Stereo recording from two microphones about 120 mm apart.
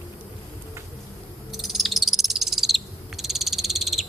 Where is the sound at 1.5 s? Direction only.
Centre (ahead or behind).